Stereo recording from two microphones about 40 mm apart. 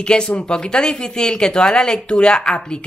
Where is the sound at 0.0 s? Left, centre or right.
Left.